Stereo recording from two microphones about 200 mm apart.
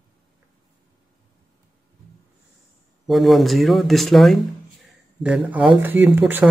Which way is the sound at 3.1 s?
Centre (ahead or behind).